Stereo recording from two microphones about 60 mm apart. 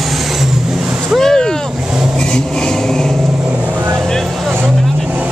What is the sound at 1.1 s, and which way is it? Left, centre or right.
Boat, centre.